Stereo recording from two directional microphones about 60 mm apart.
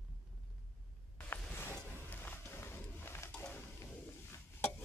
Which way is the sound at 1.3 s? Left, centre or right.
Left.